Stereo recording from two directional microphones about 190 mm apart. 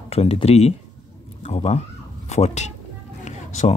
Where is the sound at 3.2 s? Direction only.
40° left (ahead or behind).